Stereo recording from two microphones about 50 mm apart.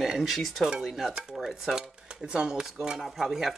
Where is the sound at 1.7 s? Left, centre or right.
Centre.